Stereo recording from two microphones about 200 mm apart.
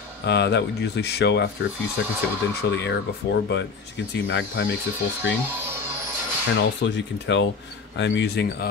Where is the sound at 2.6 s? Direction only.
55° left (ahead or behind).